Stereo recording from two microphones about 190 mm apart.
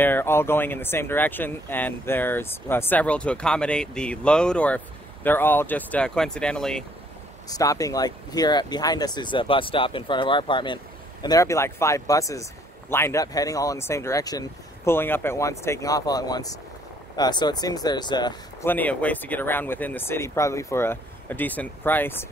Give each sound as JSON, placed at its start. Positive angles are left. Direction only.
{"t": 0.0, "sound": "speech", "side_deg": 10}
{"t": 7.4, "sound": "speech", "side_deg": 20}
{"t": 18.7, "sound": "speech", "side_deg": 10}